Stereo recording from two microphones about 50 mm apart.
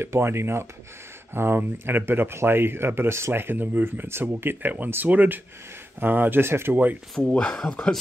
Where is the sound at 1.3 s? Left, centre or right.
Right.